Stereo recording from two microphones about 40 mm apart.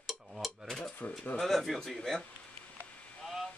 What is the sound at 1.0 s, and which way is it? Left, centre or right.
Speech, left.